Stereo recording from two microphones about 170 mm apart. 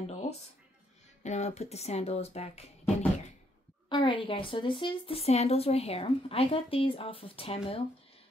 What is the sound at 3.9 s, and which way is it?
Speech, 30° left (ahead or behind).